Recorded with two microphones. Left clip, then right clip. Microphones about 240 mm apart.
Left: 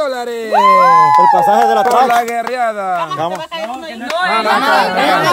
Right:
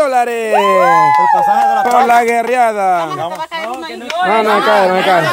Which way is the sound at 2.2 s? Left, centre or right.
Centre.